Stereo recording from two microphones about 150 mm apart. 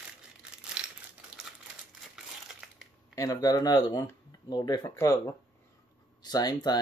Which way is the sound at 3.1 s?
25° left (ahead or behind).